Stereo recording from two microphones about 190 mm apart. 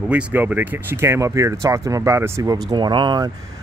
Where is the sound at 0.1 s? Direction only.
10° right (ahead or behind).